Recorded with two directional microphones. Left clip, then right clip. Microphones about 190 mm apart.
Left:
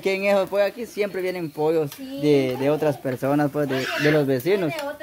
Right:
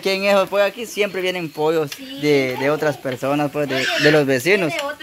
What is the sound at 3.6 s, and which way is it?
Speech, 10° right (ahead or behind).